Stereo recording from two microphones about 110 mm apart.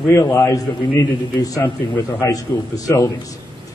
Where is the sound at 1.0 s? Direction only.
45° left (ahead or behind).